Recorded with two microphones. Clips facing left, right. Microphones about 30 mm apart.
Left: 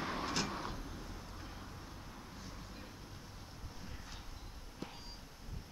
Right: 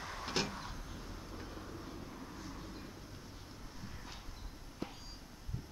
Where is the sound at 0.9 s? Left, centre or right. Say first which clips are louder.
Right 1 dB; centre.